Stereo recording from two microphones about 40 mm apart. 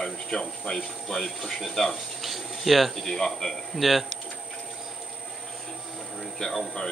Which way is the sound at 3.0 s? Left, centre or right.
Centre.